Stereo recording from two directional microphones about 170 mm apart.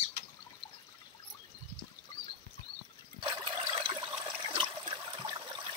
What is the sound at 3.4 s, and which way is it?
Water, 25° right (ahead or behind).